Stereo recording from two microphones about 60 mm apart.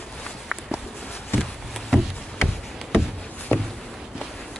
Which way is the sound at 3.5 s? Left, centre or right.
Left.